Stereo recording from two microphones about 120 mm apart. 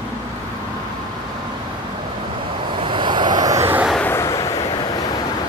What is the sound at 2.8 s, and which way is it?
Vehicle, 45° right (ahead or behind).